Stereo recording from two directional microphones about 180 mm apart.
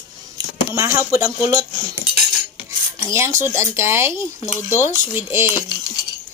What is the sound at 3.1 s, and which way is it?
Speech, 15° right (ahead or behind).